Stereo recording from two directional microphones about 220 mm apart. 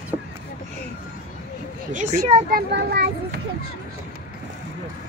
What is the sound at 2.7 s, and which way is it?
Speech, 45° right (ahead or behind).